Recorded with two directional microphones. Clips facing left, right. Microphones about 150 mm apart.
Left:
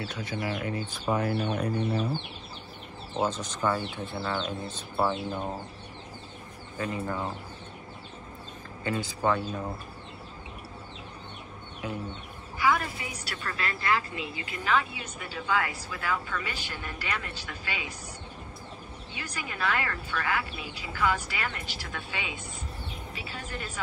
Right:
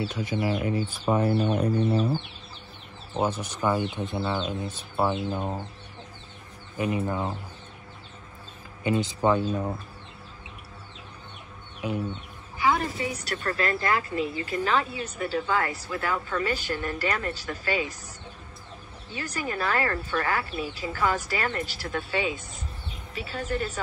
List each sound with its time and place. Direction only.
0.1 s speech: 10° right (ahead or behind)
0.4 s speech: 25° right (ahead or behind)
3.2 s speech: 10° right (ahead or behind)
6.8 s speech: 15° right (ahead or behind)
8.8 s speech: 20° right (ahead or behind)
11.8 s speech: 15° right (ahead or behind)
12.5 s a woman's voice: 30° right (ahead or behind)
13.2 s speech: 45° right (ahead or behind)
19.1 s speech: 40° right (ahead or behind)